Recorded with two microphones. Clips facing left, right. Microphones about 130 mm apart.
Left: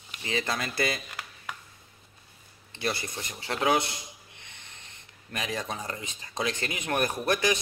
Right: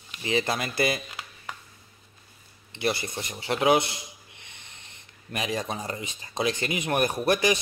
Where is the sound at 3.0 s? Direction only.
20° right (ahead or behind).